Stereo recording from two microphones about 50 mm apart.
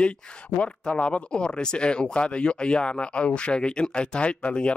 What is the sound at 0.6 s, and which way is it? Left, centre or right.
Speech, left.